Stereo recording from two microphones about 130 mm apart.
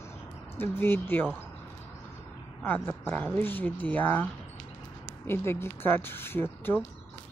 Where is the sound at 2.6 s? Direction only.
15° left (ahead or behind).